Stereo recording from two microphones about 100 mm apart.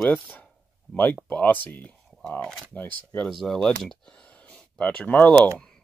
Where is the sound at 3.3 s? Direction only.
Centre (ahead or behind).